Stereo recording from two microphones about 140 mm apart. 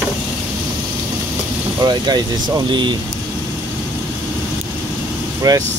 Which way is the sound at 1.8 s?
30° right (ahead or behind).